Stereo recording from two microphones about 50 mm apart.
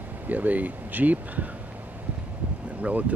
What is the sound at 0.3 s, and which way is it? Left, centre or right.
Speech, right.